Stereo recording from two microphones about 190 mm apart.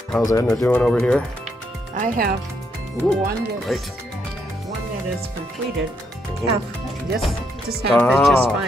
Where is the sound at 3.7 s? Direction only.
Centre (ahead or behind).